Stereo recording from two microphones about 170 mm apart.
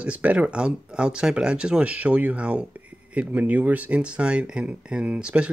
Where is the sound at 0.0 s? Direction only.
10° right (ahead or behind).